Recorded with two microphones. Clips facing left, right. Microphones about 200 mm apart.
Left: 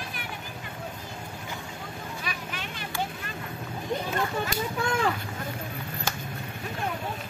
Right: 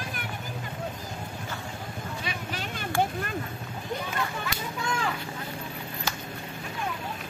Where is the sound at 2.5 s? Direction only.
45° right (ahead or behind).